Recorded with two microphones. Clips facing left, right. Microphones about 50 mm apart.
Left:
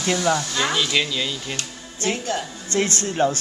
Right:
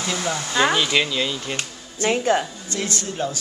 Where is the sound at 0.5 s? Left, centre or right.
Centre.